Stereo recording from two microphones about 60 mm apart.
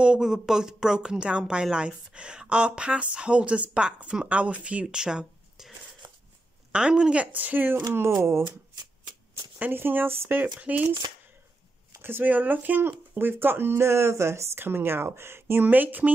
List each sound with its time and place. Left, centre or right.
0.0 s a woman's voice: centre
6.7 s speech: centre; by 7.8 s right
8.2 s speech: right
9.6 s speech: right
10.6 s speech: right
12.0 s speech: right
15.6 s speech: right